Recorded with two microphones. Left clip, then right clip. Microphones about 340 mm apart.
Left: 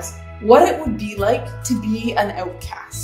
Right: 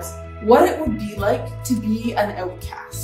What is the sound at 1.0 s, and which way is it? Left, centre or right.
Speech, centre.